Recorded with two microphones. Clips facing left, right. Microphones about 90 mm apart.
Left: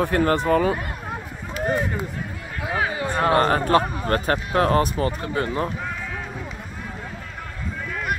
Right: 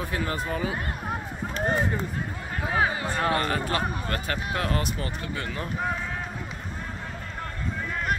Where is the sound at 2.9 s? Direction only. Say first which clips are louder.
Left 4 dB; 20° left (ahead or behind).